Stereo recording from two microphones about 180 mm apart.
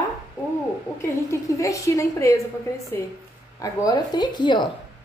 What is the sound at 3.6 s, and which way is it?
A woman's voice, 20° left (ahead or behind).